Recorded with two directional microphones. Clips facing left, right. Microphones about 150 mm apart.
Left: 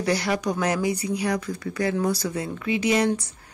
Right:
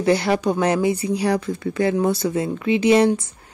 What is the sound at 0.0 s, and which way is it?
Speech, 25° right (ahead or behind).